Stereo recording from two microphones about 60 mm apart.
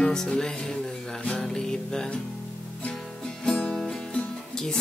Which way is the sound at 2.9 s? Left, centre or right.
Centre.